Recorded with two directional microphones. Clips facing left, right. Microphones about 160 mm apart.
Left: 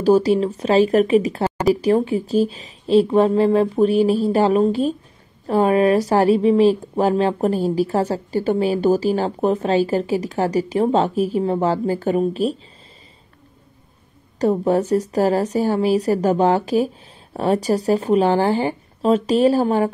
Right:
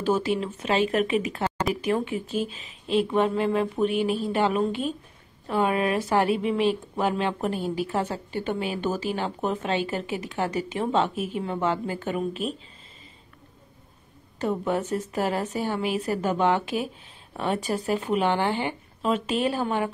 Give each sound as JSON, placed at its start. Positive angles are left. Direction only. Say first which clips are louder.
{"t": 0.0, "sound": "speech", "louder": "left 9 dB", "side_deg": 35}
{"t": 14.4, "sound": "speech", "louder": "left 8 dB", "side_deg": 35}